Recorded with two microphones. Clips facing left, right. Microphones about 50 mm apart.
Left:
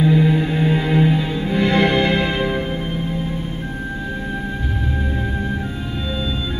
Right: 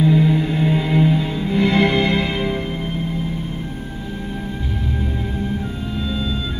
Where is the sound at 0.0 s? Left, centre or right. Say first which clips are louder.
Even; centre.